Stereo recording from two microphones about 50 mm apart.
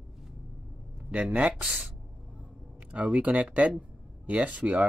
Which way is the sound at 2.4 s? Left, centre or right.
Right.